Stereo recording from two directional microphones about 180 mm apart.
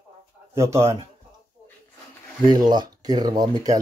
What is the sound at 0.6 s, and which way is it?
Speech, 15° right (ahead or behind).